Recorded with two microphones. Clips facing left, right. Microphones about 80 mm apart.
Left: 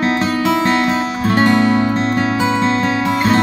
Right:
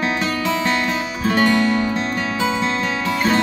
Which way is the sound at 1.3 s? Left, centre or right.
Left.